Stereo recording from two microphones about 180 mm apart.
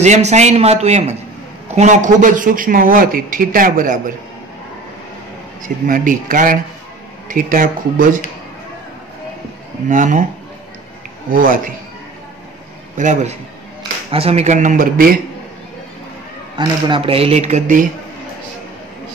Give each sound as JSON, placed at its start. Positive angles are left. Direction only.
{"t": 0.0, "sound": "a man's voice", "side_deg": -40}
{"t": 5.6, "sound": "a man's voice", "side_deg": -45}
{"t": 9.8, "sound": "a man's voice", "side_deg": -45}
{"t": 11.2, "sound": "a man's voice", "side_deg": -50}
{"t": 12.9, "sound": "a man's voice", "side_deg": -45}
{"t": 16.5, "sound": "speech", "side_deg": -25}